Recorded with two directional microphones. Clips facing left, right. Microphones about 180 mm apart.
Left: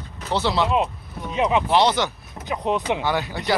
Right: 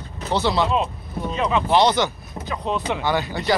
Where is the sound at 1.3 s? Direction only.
15° left (ahead or behind).